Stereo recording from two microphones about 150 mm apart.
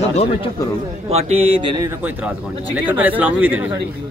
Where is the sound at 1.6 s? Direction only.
30° right (ahead or behind).